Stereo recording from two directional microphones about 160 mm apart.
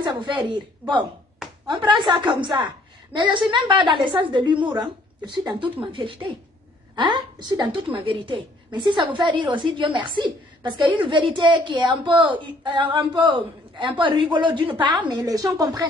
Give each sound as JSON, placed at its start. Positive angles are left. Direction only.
{"t": 0.0, "sound": "a woman's voice", "side_deg": -30}